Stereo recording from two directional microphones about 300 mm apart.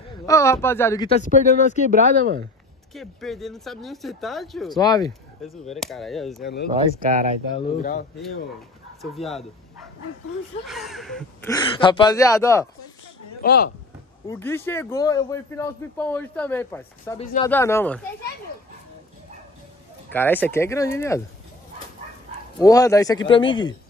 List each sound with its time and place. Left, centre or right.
0.3 s speech: centre
1.9 s speech: right
2.9 s speech: centre
4.7 s speech: centre
5.4 s speech: centre
6.4 s speech: left
9.0 s speech: centre
10.7 s speech: centre
11.5 s speech: centre
13.4 s speech: left
14.2 s speech: centre
20.1 s speech: centre
22.6 s speech: centre